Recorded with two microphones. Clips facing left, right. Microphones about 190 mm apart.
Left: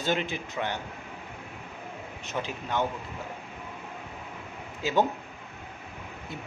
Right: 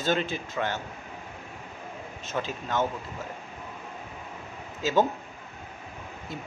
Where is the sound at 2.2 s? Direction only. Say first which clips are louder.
Right 2 dB; 15° left (ahead or behind).